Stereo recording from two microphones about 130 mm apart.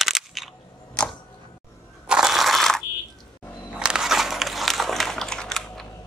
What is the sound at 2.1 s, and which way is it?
Crunch, 5° right (ahead or behind).